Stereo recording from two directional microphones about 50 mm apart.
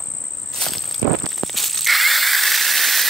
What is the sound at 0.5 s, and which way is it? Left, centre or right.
Insect, centre.